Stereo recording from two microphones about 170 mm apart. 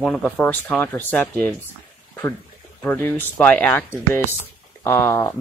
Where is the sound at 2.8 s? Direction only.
10° left (ahead or behind).